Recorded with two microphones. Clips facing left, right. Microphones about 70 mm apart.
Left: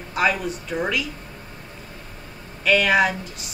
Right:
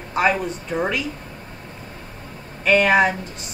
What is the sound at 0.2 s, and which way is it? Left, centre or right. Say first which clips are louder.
Speech: right 2 dB; right.